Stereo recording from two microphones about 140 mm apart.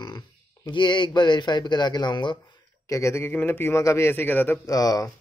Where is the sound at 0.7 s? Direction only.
35° left (ahead or behind).